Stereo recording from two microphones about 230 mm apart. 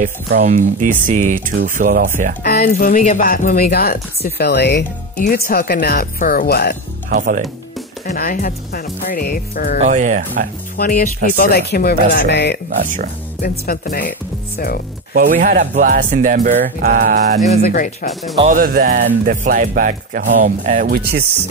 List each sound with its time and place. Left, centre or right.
0.0 s speech: right
2.4 s speech: left
7.1 s speech: right
8.1 s speech: left
9.8 s speech: right
10.8 s speech: left
12.6 s speech: right
13.4 s speech: left
15.1 s speech: right
17.6 s speech: left
18.5 s speech: right